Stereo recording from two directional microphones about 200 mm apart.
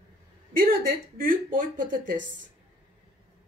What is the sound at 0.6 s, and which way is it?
A woman's voice, 45° right (ahead or behind).